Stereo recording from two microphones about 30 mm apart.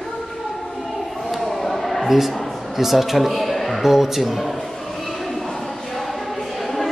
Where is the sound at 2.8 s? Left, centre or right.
Centre.